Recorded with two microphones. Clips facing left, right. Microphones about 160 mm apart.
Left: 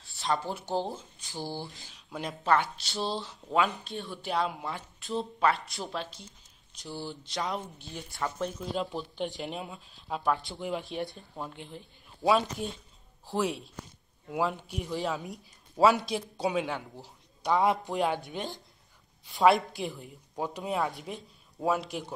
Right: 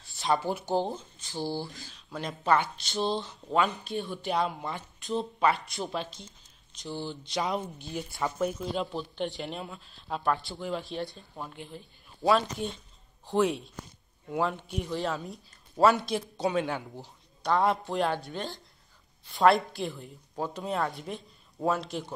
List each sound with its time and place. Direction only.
0.0 s speech: centre (ahead or behind)
1.3 s speech: 15° left (ahead or behind)
2.4 s speech: centre (ahead or behind)
10.5 s speech: 15° left (ahead or behind)
12.2 s speech: 5° left (ahead or behind)
15.7 s speech: 5° left (ahead or behind)
20.3 s speech: 15° left (ahead or behind)